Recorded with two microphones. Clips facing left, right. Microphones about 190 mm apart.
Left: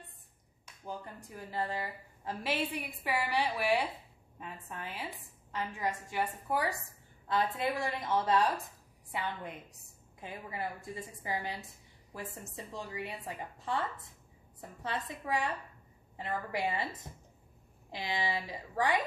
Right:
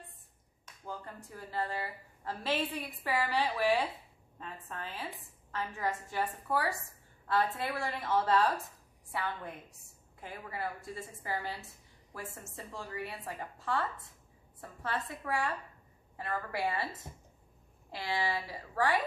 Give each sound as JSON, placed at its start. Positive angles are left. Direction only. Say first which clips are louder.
{"t": 0.7, "sound": "speech", "louder": "left 1 dB", "side_deg": 15}
{"t": 17.9, "sound": "speech", "louder": "right 1 dB", "side_deg": 15}